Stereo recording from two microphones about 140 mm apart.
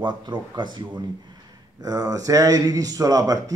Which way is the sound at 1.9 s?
25° right (ahead or behind).